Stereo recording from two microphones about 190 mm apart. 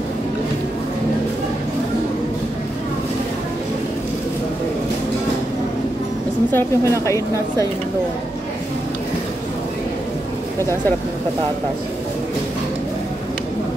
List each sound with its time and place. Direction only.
6.5 s a woman's voice: 15° left (ahead or behind)
10.6 s a woman's voice: 15° left (ahead or behind)